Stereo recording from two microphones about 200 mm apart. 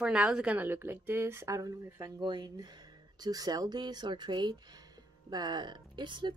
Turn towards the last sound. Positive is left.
turn(degrees=-25)  # may be behind; listen again after turning